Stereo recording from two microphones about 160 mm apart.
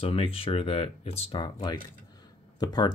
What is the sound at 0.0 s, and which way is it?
Speech, 35° left (ahead or behind).